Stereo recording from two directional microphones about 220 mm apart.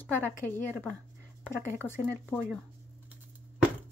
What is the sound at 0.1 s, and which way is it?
Speech, 10° left (ahead or behind).